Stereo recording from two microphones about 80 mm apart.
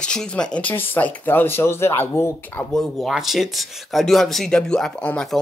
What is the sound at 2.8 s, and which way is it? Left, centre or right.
Speech, centre.